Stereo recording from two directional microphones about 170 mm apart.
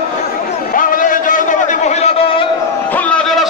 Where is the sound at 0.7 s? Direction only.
55° left (ahead or behind).